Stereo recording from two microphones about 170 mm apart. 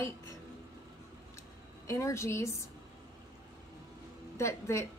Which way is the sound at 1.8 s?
20° left (ahead or behind).